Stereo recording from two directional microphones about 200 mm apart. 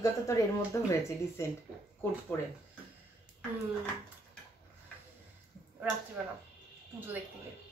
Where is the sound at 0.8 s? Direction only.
15° left (ahead or behind).